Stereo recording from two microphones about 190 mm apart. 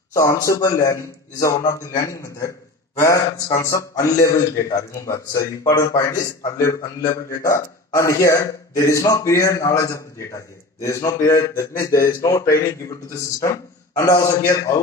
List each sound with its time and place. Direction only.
0.1 s a man's voice: 15° left (ahead or behind)